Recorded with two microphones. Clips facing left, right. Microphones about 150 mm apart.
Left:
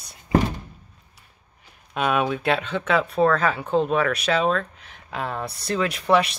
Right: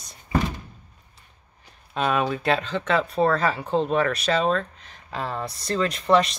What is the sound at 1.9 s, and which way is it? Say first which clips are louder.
Speech: left 1 dB; 5° left (ahead or behind).